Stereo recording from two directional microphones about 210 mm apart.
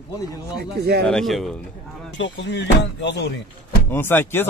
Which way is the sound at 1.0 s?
Centre (ahead or behind).